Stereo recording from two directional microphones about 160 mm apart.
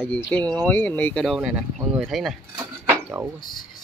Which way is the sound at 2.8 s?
15° right (ahead or behind).